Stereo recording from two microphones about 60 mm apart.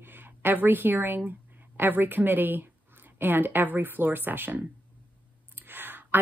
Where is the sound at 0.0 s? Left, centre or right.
Right.